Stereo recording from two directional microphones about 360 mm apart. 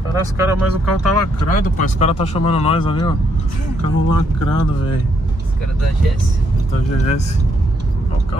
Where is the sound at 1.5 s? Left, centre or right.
Centre.